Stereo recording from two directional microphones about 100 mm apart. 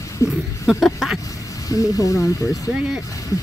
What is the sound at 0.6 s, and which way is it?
Speech, centre (ahead or behind).